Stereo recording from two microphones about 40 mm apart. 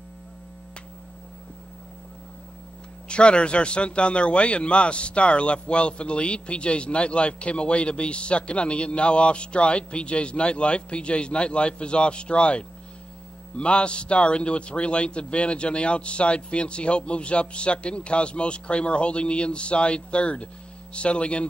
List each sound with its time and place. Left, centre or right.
3.1 s a man's voice: left